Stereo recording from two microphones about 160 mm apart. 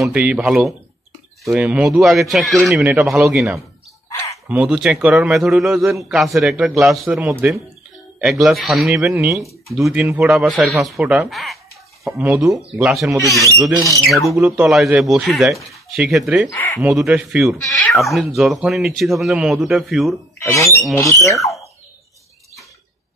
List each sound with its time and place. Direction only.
0.0 s speech: 5° right (ahead or behind)
8.2 s speech: centre (ahead or behind)
12.2 s speech: 15° right (ahead or behind)
12.8 s speech: 5° right (ahead or behind)
13.2 s speech: 20° left (ahead or behind)
13.5 s speech: 20° right (ahead or behind)
14.4 s speech: 5° right (ahead or behind)
16.5 s speech: 15° left (ahead or behind)
16.9 s speech: centre (ahead or behind)
20.3 s speech: 20° left (ahead or behind)